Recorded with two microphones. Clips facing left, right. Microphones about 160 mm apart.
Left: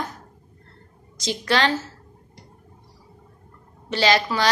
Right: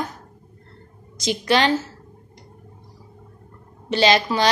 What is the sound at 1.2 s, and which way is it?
Speech, 15° right (ahead or behind).